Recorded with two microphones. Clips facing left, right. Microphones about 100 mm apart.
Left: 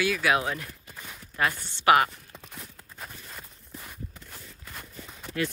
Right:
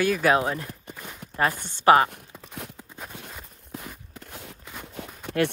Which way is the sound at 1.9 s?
35° right (ahead or behind).